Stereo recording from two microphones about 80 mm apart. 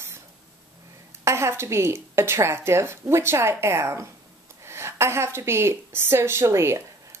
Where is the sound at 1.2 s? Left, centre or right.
Right.